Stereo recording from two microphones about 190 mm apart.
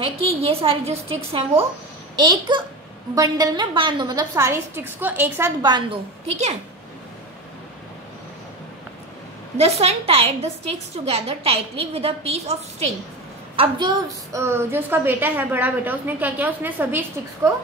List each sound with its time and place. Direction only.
0.0 s a woman's voice: 30° right (ahead or behind); by 5.5 s 10° right (ahead or behind)
5.6 s a woman's voice: 25° right (ahead or behind)
9.6 s a woman's voice: 35° right (ahead or behind); by 17.0 s 10° right (ahead or behind)